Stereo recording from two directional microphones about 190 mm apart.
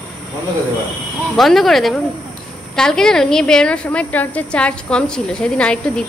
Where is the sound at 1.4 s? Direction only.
Centre (ahead or behind).